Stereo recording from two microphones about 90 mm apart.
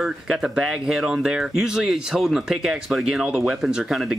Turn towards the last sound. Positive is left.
turn(degrees=-5)  # may be behind; listen again after turning